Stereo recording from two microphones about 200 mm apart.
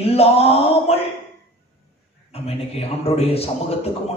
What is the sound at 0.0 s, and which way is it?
Mantra, 30° left (ahead or behind).